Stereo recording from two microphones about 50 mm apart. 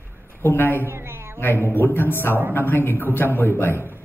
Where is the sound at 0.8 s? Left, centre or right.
Right.